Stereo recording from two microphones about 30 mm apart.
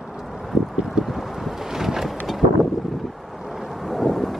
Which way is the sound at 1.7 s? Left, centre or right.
Centre.